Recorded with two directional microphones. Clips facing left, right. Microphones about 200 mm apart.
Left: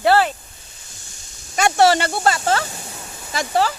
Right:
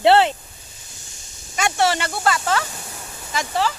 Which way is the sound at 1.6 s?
35° left (ahead or behind).